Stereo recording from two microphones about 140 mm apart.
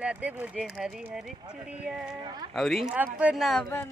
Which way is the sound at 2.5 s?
Centre (ahead or behind).